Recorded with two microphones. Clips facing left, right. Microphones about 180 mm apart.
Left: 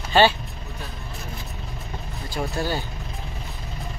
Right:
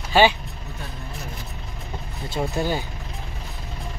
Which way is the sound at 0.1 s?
10° right (ahead or behind).